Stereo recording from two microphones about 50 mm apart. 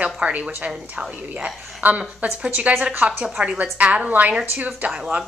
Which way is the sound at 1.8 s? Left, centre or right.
Right.